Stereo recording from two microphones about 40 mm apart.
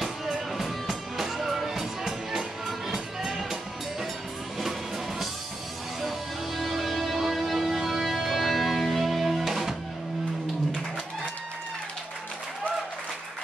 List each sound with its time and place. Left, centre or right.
0.0 s music: centre
6.0 s music: centre